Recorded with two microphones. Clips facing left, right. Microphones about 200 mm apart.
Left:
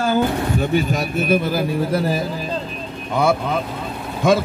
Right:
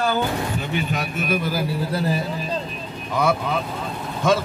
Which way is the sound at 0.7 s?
35° left (ahead or behind).